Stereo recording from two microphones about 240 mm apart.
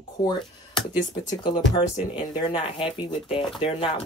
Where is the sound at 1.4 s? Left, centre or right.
Centre.